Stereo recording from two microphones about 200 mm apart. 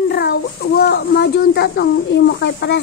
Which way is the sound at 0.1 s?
55° left (ahead or behind).